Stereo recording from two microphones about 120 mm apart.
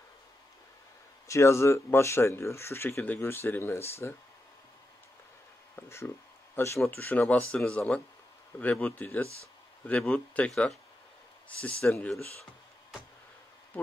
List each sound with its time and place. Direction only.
1.2 s speech: 25° left (ahead or behind)
5.8 s a sound: 20° left (ahead or behind)
6.9 s speech: 15° left (ahead or behind)